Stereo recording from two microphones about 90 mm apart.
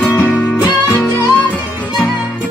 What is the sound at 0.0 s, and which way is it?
Music, 20° left (ahead or behind).